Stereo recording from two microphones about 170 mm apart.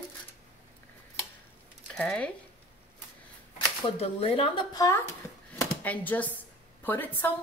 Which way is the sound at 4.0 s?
35° left (ahead or behind).